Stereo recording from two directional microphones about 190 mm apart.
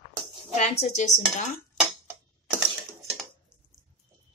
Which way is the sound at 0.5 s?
35° left (ahead or behind).